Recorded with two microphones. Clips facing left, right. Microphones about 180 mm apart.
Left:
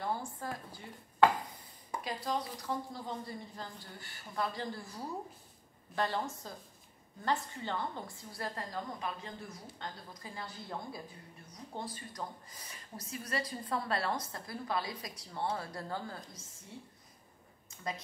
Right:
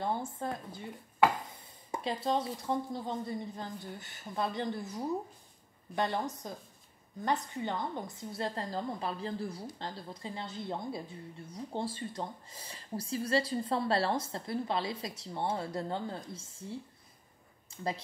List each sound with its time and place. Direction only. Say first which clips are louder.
0.0 s speech: right 3 dB; 20° right (ahead or behind)
1.9 s speech: right 5 dB; 25° right (ahead or behind)